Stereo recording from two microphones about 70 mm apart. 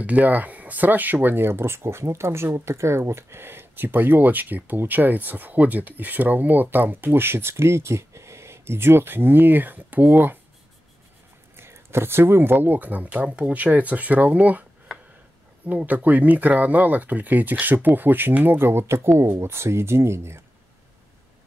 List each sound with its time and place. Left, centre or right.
0.0 s speech: right
11.5 s speech: right
14.9 s a sound: centre
15.6 s speech: right